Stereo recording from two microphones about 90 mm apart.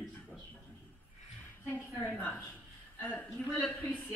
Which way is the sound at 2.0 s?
20° left (ahead or behind).